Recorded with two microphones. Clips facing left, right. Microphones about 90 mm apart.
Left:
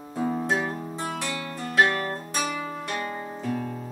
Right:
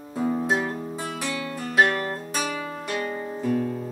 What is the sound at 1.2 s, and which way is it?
Music, 20° left (ahead or behind).